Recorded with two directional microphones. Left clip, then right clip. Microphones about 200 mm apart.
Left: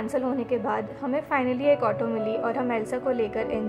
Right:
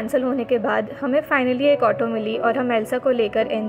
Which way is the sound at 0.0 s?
15° right (ahead or behind).